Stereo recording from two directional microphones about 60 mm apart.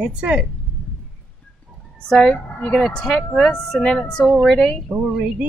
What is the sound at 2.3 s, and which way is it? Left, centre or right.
Speech, left.